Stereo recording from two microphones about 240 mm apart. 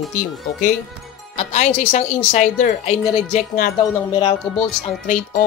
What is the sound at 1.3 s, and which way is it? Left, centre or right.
A woman's voice, left.